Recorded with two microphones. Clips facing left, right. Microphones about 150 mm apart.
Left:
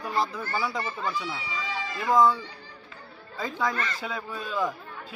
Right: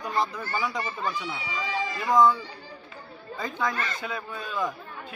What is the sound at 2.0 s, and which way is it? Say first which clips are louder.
Speech: even; 5° left (ahead or behind).